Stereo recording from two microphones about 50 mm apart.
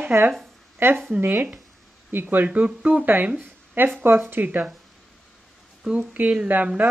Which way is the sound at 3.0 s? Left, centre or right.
Right.